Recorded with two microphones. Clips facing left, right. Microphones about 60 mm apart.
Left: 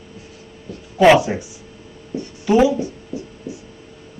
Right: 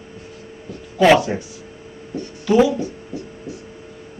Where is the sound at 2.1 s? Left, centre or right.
Centre.